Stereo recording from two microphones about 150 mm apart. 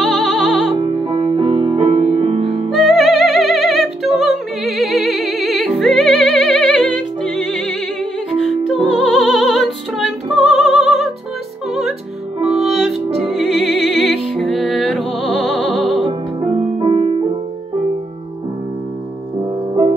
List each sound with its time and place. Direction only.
0.0 s music: 5° left (ahead or behind)
0.7 s music: 35° right (ahead or behind)
2.7 s music: centre (ahead or behind)
12.4 s music: 45° right (ahead or behind)
12.8 s music: centre (ahead or behind)
16.8 s music: 45° right (ahead or behind)